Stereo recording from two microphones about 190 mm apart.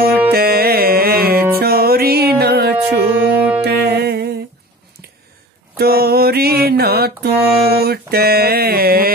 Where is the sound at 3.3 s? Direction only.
10° right (ahead or behind).